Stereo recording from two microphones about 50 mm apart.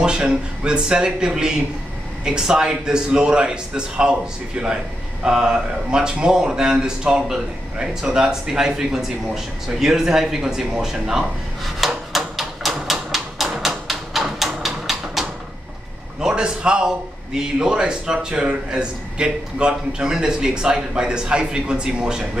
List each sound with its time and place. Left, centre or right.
0.0 s a man's voice: centre
11.6 s a sound: centre
16.2 s a man's voice: centre